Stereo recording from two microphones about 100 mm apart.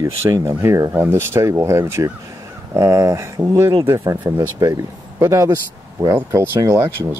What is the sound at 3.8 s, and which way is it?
Speech, 30° right (ahead or behind).